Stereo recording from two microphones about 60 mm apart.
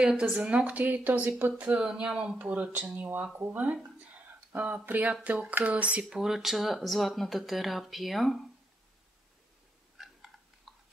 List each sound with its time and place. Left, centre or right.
0.2 s speech: centre
1.8 s speech: centre
6.0 s speech: centre
9.9 s a sound: centre